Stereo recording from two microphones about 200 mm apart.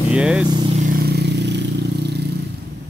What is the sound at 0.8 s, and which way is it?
Vehicle, 45° right (ahead or behind).